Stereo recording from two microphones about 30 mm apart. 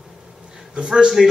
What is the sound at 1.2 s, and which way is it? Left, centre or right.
Speech, centre.